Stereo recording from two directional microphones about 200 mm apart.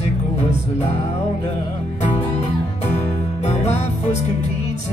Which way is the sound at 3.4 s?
35° left (ahead or behind).